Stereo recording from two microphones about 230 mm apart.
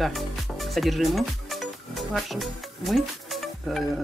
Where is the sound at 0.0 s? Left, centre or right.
Centre.